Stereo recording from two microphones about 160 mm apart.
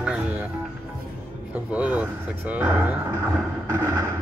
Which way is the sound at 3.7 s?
15° right (ahead or behind).